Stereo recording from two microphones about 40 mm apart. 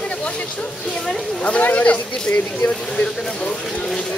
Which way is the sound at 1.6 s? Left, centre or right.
Left.